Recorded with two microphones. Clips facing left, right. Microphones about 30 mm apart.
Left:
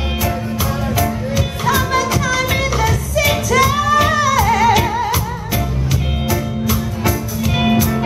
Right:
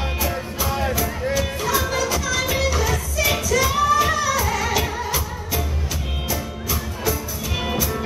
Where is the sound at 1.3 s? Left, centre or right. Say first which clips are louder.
Left 4 dB; left.